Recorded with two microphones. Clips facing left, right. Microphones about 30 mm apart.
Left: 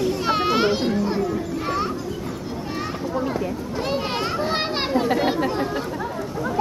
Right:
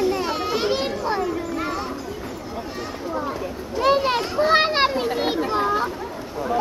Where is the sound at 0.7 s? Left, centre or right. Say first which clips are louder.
Left 1 dB; centre.